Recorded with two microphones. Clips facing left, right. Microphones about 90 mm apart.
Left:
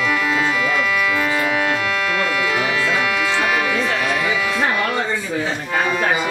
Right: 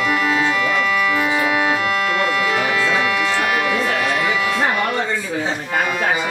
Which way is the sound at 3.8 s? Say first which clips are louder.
Right 1 dB; 5° right (ahead or behind).